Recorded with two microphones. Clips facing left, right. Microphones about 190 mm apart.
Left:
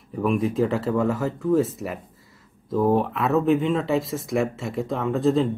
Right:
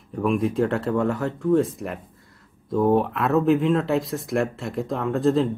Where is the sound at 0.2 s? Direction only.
Centre (ahead or behind).